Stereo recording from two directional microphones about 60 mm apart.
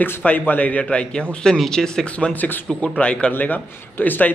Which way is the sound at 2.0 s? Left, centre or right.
Left.